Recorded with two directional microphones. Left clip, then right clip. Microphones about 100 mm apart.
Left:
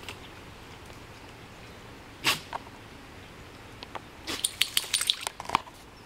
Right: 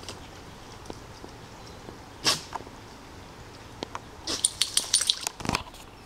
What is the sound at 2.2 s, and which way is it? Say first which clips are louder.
Cat: right 1 dB; 10° left (ahead or behind).